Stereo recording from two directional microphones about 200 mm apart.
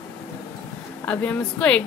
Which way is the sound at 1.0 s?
5° left (ahead or behind).